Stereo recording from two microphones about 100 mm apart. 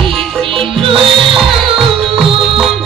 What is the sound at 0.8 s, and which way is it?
Music, 65° right (ahead or behind).